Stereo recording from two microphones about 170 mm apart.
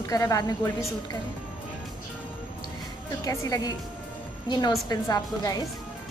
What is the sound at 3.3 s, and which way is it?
Speech, 20° left (ahead or behind).